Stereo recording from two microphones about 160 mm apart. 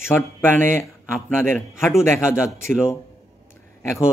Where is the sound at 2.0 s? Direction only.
15° left (ahead or behind).